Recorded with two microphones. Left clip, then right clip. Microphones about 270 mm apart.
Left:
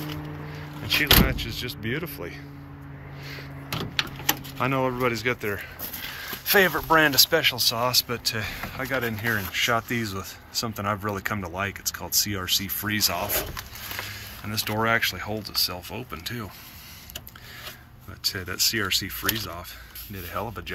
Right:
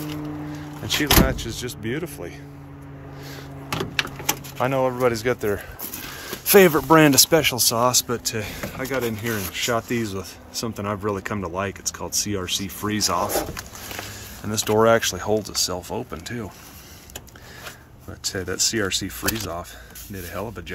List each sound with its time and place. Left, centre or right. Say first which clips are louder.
0.8 s speech: right 1 dB; right
3.3 s a sound: right 3 dB; right
4.6 s speech: right 5 dB; centre
6.4 s speech: right 6 dB; right; by 13.5 s centre
14.5 s speech: right 7 dB; right
18.2 s speech: right 1 dB; right
20.2 s speech: even; centre